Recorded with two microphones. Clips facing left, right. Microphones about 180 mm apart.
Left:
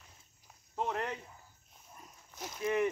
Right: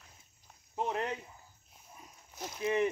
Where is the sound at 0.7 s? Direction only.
20° right (ahead or behind).